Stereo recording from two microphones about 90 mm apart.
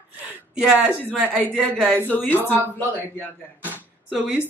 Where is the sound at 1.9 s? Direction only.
20° left (ahead or behind).